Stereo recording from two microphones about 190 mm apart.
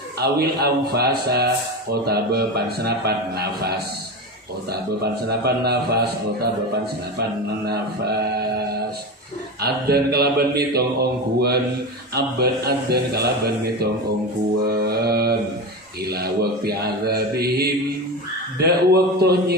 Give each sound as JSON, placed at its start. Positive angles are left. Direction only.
{"t": 0.2, "sound": "speech", "side_deg": -55}
{"t": 5.4, "sound": "speech", "side_deg": -55}
{"t": 9.6, "sound": "speech", "side_deg": -55}
{"t": 14.7, "sound": "mantra", "side_deg": -55}
{"t": 16.1, "sound": "speech", "side_deg": -55}